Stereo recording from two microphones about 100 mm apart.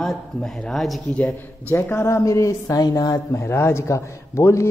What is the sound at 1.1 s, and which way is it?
A man's voice, 20° left (ahead or behind).